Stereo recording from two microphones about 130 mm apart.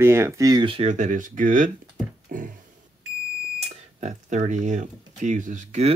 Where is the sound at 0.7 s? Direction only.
60° right (ahead or behind); by 1.7 s 90° right.